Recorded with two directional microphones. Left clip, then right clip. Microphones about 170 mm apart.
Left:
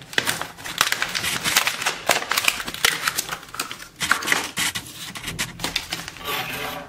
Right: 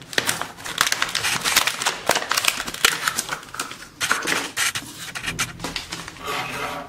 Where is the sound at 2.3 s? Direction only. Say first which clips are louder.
Even; 5° right (ahead or behind).